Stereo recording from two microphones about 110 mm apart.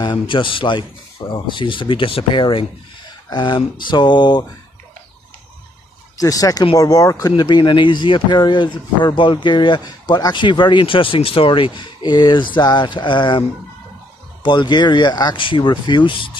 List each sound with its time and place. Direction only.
0.0 s speech: 50° left (ahead or behind)
6.1 s speech: 30° left (ahead or behind)
14.4 s speech: 45° left (ahead or behind)